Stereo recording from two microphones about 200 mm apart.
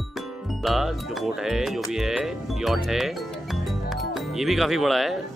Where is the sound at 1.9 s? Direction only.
Centre (ahead or behind).